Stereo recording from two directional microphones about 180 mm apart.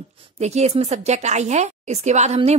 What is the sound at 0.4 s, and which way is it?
A woman's voice, 35° right (ahead or behind).